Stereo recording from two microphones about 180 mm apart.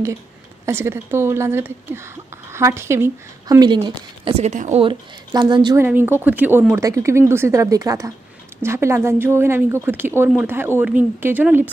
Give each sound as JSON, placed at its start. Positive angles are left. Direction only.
{"t": 0.7, "sound": "speech", "side_deg": -15}
{"t": 5.8, "sound": "speech", "side_deg": -10}